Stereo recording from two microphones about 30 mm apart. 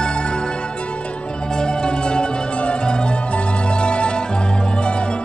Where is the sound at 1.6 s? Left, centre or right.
Left.